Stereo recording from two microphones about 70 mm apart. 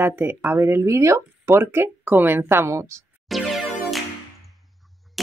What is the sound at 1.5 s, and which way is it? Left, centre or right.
Speech, right.